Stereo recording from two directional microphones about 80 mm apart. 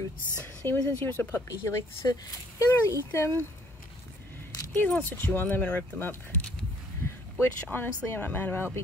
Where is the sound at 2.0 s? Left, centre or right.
Left.